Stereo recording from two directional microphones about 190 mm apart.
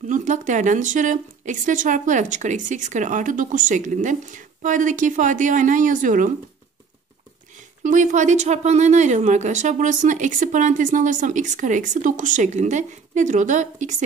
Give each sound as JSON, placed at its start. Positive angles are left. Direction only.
{"t": 0.1, "sound": "speech", "side_deg": -40}
{"t": 7.8, "sound": "speech", "side_deg": -40}